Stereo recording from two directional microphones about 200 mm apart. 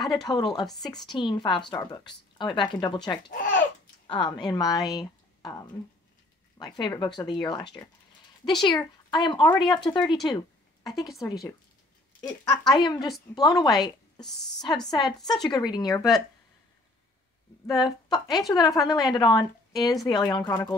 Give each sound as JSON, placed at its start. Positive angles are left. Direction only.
{"t": 0.0, "sound": "a woman's voice", "side_deg": 20}
{"t": 3.3, "sound": "speech", "side_deg": 45}
{"t": 4.1, "sound": "a woman's voice", "side_deg": 20}
{"t": 12.2, "sound": "a woman's voice", "side_deg": 20}
{"t": 17.6, "sound": "a woman's voice", "side_deg": 20}